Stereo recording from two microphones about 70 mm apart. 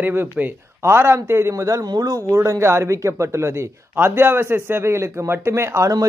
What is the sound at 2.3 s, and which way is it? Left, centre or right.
Speech, right.